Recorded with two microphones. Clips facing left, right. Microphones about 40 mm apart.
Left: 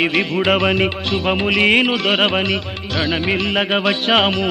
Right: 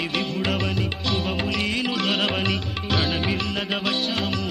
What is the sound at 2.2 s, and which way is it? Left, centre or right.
Music, left.